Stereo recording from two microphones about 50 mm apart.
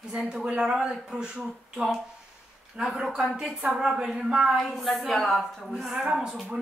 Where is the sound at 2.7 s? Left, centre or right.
Centre.